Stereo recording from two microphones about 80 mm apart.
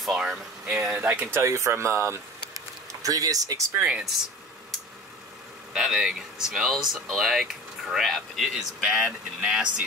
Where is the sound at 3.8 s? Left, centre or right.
Centre.